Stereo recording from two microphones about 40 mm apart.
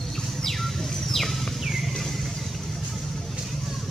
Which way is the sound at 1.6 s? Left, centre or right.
Centre.